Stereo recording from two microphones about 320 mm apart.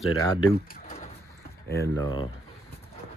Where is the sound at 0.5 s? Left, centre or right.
Left.